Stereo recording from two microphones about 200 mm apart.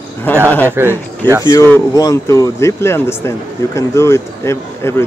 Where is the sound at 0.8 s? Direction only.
10° right (ahead or behind).